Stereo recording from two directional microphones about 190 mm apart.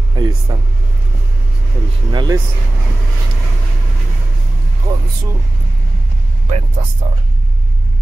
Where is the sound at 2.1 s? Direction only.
20° right (ahead or behind).